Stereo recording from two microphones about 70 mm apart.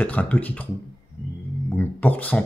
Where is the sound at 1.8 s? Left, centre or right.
Left.